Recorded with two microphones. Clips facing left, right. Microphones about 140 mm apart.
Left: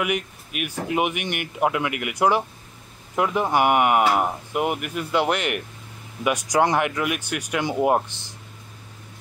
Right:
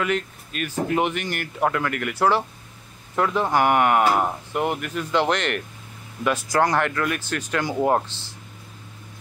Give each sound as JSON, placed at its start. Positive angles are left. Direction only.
{"t": 0.0, "sound": "speech", "side_deg": 10}